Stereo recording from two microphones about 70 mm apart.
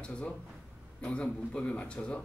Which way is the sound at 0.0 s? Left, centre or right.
Centre.